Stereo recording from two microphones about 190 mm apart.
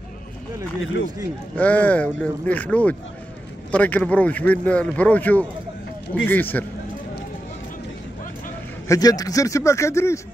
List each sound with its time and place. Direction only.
1.6 s speech: 10° left (ahead or behind)
8.8 s speech: 20° left (ahead or behind)